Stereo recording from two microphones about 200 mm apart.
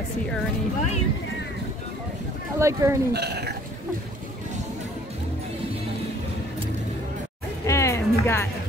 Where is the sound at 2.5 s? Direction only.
15° right (ahead or behind).